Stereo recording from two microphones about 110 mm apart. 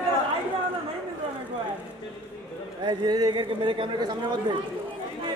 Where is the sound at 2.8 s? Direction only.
40° right (ahead or behind).